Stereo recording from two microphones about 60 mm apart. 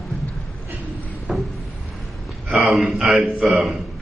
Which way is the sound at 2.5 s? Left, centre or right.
Centre.